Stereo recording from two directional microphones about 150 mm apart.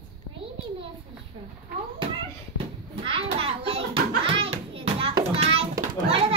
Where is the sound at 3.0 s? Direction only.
40° right (ahead or behind).